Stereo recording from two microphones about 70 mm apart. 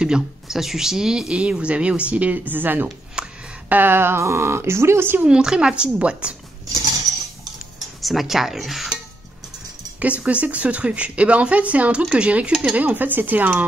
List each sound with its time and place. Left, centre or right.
0.0 s speech: centre; by 2.9 s right
3.2 s a sound: centre
3.6 s a woman's voice: right
5.2 s speech: centre
8.0 s cutlery: centre
9.9 s speech: right